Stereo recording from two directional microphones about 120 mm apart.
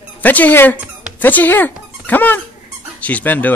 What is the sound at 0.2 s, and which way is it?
A woman's voice, 15° left (ahead or behind).